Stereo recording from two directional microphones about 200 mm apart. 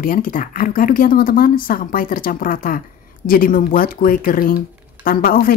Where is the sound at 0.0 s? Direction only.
45° left (ahead or behind).